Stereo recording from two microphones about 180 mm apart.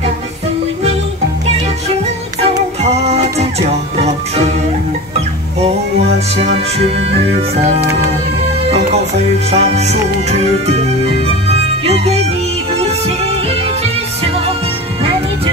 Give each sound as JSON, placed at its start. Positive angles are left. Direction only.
{"t": 2.8, "sound": "music", "side_deg": -35}
{"t": 9.5, "sound": "music", "side_deg": -35}
{"t": 11.8, "sound": "music", "side_deg": -35}